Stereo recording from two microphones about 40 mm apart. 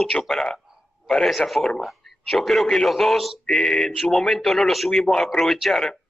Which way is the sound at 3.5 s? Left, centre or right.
Centre.